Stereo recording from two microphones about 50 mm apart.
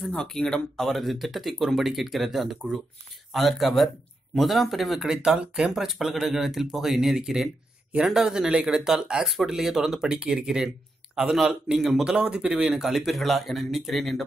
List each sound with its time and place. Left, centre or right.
0.2 s speech: centre
0.7 s speech: centre
5.1 s speech: centre